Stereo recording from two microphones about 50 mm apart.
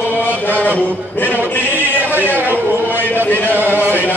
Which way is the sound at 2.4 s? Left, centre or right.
Right.